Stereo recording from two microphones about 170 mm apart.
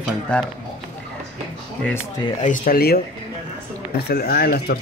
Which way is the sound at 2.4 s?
50° left (ahead or behind).